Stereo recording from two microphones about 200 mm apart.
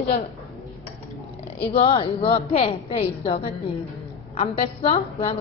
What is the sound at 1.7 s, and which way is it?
A woman's voice, 30° left (ahead or behind).